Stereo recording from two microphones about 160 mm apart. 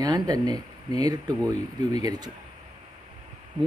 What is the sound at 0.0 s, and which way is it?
Speech, 25° right (ahead or behind).